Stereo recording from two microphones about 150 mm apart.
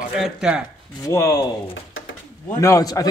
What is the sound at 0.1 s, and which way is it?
Speech, 5° right (ahead or behind).